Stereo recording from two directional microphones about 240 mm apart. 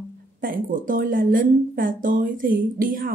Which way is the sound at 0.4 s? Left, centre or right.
Right.